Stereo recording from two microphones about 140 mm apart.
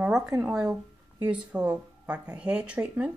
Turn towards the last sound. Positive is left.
turn(degrees=-5)  # may be behind; listen again after turning